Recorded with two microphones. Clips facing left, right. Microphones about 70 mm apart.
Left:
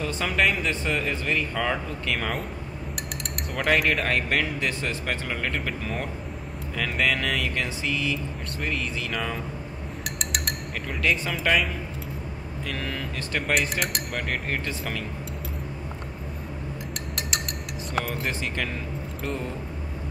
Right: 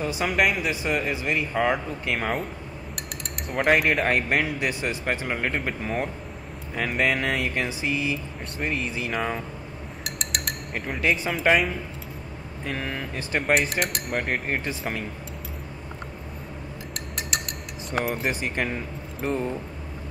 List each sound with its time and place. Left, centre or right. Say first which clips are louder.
0.0 s speech: right 1 dB; centre
3.6 s speech: right 2 dB; centre
3.9 s speech: right 2 dB; right
10.0 s a sound: even; centre
10.9 s speech: right 1 dB; centre
11.4 s speech: right 3 dB; centre
12.6 s speech: right 2 dB; right
13.6 s speech: right 1 dB; centre
14.5 s speech: right 2 dB; right
18.0 s speech: right 3 dB; centre
18.4 s speech: right 2 dB; right